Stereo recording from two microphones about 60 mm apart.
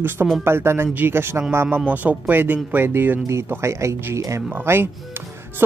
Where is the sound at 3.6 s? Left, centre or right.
Right.